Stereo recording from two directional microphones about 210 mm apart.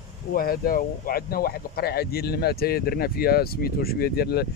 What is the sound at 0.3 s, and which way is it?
Speech, 45° left (ahead or behind).